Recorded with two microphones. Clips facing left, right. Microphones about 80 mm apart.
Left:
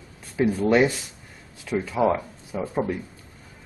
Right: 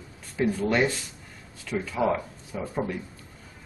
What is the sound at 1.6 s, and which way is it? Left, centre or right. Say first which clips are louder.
Speech: left 4 dB; centre.